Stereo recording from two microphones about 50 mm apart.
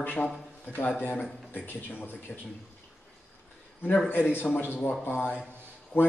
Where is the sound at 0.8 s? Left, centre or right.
Left.